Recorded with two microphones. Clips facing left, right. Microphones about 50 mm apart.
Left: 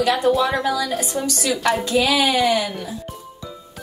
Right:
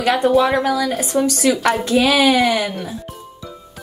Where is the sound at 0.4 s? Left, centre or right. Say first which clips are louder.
Right 4 dB; right.